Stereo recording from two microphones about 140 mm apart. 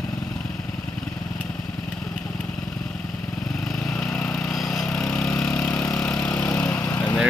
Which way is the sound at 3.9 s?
5° left (ahead or behind).